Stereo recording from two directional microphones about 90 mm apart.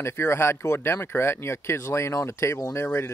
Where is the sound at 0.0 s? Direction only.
30° left (ahead or behind).